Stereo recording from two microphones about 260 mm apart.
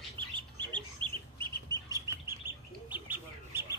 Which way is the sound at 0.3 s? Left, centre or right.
Centre.